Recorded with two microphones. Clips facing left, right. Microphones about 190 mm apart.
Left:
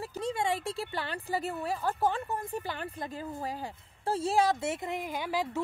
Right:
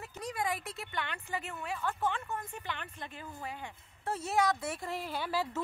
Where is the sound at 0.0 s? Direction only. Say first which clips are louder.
Left 5 dB; 30° left (ahead or behind).